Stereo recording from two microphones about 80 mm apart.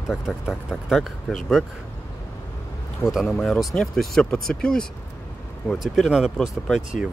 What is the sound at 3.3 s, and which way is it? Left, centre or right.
Speech, centre.